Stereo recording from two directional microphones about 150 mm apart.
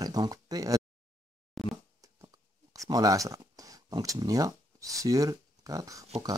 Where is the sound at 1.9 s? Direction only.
25° right (ahead or behind).